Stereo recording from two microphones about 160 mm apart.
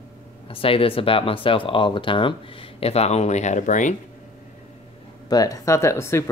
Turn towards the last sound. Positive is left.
turn(degrees=15)  # may be behind; listen again after turning